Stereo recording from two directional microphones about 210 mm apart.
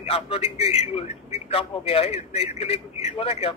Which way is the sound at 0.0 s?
30° left (ahead or behind).